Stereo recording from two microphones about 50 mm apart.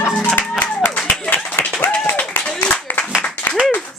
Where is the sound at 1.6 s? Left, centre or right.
Left.